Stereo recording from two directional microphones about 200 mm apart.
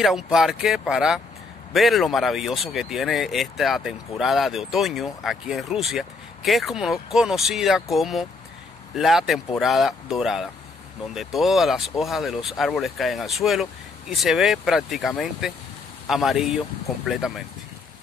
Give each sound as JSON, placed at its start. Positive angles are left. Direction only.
{"t": 0.0, "sound": "speech", "side_deg": 0}